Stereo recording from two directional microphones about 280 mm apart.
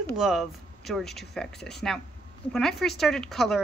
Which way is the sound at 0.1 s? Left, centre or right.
Centre.